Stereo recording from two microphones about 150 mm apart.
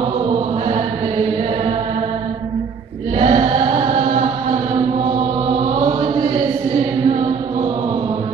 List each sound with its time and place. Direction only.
3.2 s chant: 40° right (ahead or behind)